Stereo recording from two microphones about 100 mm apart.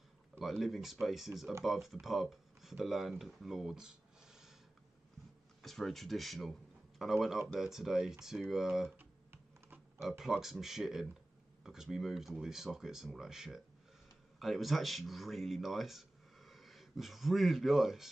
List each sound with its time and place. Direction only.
0.4 s speech: centre (ahead or behind)
5.6 s speech: centre (ahead or behind)
8.9 s typing: 20° right (ahead or behind)
10.0 s speech: 5° right (ahead or behind)